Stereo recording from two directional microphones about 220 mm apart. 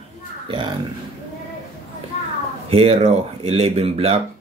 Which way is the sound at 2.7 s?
25° right (ahead or behind).